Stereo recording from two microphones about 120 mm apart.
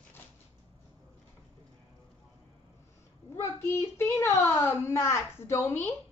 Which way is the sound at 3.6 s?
20° left (ahead or behind).